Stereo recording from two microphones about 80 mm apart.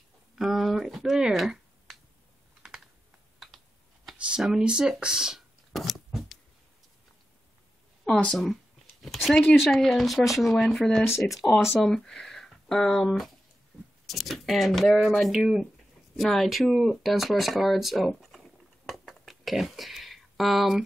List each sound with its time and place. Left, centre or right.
0.4 s finger snapping: centre
3.3 s computer keyboard: centre
4.2 s shuffling cards: centre
8.0 s speech: centre
9.0 s a sound: centre
9.7 s speech: centre
11.1 s speech: left
11.7 s speech: centre